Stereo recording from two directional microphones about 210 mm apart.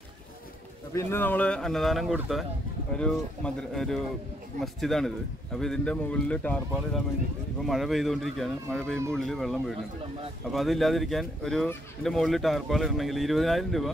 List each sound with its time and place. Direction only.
0.9 s speech: 10° left (ahead or behind)